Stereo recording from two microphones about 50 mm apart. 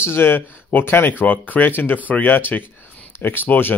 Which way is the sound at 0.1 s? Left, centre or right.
Left.